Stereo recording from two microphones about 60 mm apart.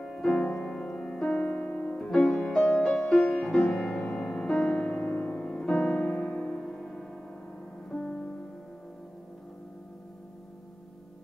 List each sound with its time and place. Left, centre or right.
0.0 s music: centre
4.9 s music: left
5.5 s music: centre